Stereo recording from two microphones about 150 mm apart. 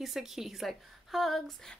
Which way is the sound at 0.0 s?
Centre (ahead or behind).